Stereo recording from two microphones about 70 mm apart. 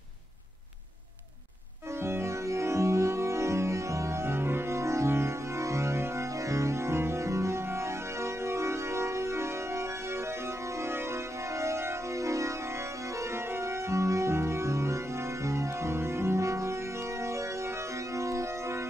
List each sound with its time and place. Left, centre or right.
2.0 s music: right
11.5 s organ: right
18.1 s music: right